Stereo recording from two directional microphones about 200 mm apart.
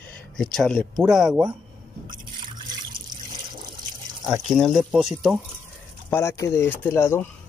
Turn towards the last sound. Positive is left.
turn(degrees=10)  # may be behind; listen again after turning